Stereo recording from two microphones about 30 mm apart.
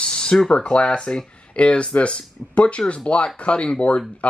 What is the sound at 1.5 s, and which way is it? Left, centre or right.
Speech, left.